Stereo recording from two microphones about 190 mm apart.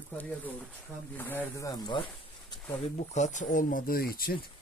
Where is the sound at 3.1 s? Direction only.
40° left (ahead or behind).